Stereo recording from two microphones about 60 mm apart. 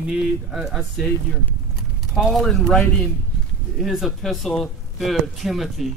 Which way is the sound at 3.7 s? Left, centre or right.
Centre.